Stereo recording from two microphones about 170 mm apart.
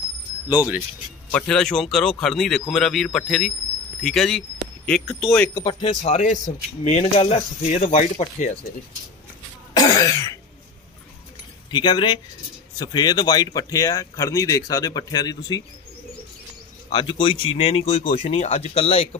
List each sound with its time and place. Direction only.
1.3 s speech: 5° left (ahead or behind)
5.5 s speech: 25° left (ahead or behind)
6.0 s speech: 45° left (ahead or behind)
9.8 s throat clearing: 20° left (ahead or behind)
11.7 s speech: 25° left (ahead or behind)
16.9 s speech: 30° left (ahead or behind)